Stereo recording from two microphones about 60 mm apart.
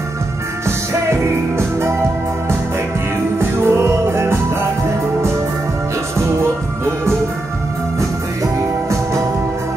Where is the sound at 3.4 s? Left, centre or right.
Right.